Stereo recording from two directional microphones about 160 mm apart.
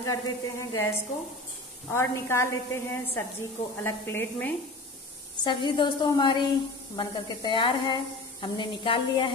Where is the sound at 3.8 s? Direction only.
15° left (ahead or behind).